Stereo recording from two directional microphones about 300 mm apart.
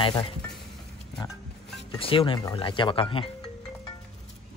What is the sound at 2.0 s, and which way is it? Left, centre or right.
Speech, centre.